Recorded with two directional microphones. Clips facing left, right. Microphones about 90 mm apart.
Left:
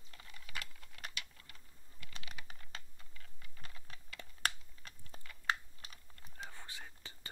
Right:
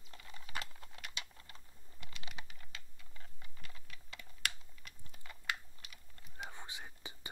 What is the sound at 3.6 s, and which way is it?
Typing, 35° left (ahead or behind).